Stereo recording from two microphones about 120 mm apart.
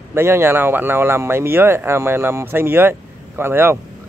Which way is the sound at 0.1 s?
20° right (ahead or behind).